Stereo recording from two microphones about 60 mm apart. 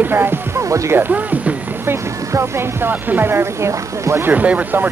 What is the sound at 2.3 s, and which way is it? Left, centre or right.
Speech, right.